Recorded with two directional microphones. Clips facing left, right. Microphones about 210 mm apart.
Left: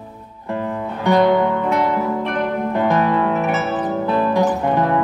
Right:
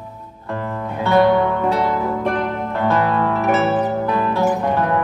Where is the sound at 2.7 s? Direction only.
15° left (ahead or behind).